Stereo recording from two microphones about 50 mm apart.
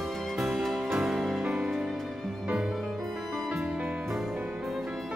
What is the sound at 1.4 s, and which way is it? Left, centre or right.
Music, centre.